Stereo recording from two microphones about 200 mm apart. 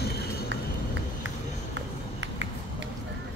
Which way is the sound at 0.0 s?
50° left (ahead or behind).